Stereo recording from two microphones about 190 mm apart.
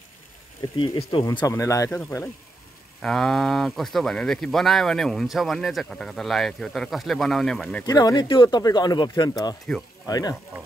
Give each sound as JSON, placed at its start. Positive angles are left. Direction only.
{"t": 0.7, "sound": "speech", "side_deg": 25}
{"t": 7.8, "sound": "speech", "side_deg": 20}